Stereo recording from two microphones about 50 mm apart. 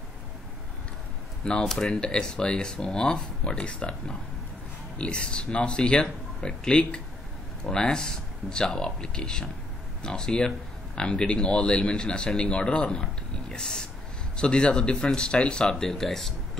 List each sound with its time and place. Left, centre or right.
1.6 s speech: centre
15.6 s speech: centre